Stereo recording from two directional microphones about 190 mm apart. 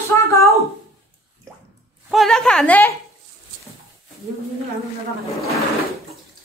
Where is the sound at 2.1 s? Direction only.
Centre (ahead or behind).